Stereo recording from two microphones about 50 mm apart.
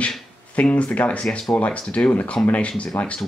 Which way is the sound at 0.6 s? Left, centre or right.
Left.